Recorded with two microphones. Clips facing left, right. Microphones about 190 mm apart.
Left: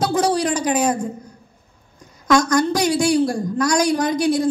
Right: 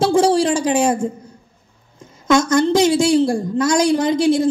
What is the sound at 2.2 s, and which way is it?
A woman's voice, 25° right (ahead or behind).